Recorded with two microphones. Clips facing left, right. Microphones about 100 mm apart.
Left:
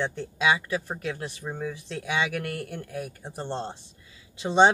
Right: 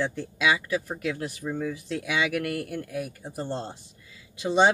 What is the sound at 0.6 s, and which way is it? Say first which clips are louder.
Speech: right 1 dB; 30° left (ahead or behind).